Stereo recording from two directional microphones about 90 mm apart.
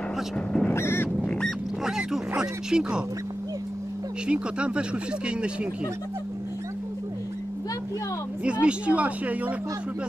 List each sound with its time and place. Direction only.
0.5 s goose: 10° left (ahead or behind)
0.7 s duck: 25° left (ahead or behind)
1.2 s duck: 10° left (ahead or behind)
1.9 s a sound: 10° right (ahead or behind)
4.3 s speech: 10° right (ahead or behind)
8.5 s speech: 15° right (ahead or behind)